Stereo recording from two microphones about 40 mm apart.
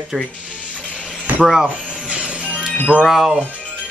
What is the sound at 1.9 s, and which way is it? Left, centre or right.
Music, right.